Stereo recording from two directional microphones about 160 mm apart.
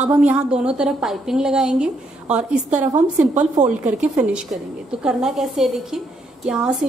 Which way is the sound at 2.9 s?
45° right (ahead or behind).